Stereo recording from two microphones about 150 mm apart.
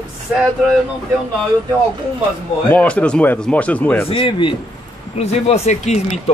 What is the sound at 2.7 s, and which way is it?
Speech, 10° left (ahead or behind).